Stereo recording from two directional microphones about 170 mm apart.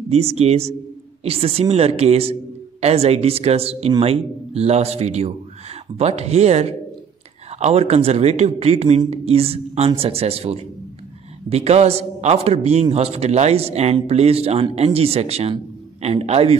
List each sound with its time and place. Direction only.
0.1 s speech: 35° right (ahead or behind)